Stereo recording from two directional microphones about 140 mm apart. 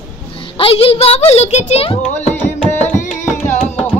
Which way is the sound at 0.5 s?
40° left (ahead or behind).